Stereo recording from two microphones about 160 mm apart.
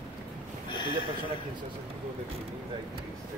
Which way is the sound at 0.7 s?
30° left (ahead or behind).